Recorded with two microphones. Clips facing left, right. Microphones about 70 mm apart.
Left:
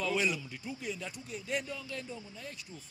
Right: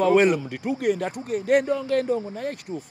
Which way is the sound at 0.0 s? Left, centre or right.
Right.